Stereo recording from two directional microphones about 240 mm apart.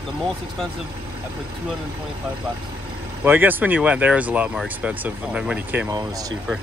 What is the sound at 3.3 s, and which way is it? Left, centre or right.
Speech, centre.